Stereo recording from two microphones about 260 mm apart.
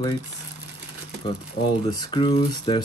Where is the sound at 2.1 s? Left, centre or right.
Centre.